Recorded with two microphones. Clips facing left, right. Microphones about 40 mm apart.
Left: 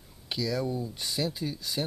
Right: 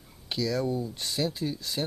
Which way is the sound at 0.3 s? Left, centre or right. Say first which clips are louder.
Right 2 dB; centre.